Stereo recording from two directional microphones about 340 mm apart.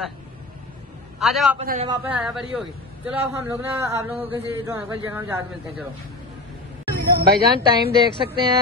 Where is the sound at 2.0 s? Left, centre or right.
Centre.